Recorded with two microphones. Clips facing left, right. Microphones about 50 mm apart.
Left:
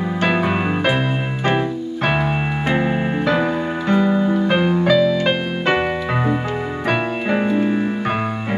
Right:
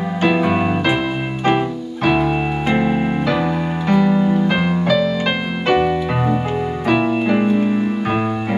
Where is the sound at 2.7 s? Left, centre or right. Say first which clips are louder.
Right 2 dB; centre.